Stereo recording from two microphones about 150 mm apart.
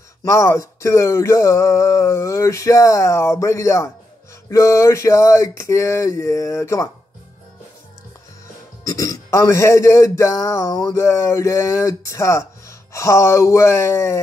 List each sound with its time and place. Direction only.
0.2 s speech: 20° left (ahead or behind)
8.8 s speech: 20° left (ahead or behind)